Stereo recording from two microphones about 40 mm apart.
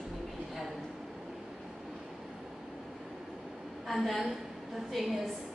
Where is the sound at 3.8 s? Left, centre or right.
Centre.